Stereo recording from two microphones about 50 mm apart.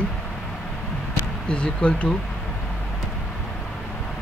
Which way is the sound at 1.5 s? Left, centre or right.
Left.